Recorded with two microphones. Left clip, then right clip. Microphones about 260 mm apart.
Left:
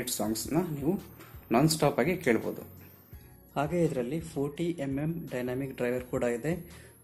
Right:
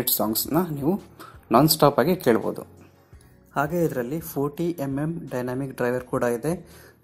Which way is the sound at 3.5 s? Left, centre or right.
Centre.